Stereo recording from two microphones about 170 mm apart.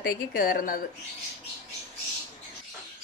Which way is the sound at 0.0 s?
55° left (ahead or behind).